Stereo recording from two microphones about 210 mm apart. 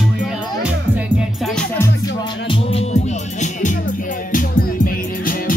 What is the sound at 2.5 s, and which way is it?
Music, 30° left (ahead or behind).